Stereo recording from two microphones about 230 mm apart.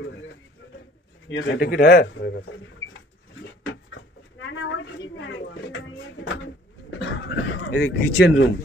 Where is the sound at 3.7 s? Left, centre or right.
Left.